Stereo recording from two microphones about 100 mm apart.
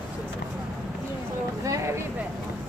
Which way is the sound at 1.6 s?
30° right (ahead or behind).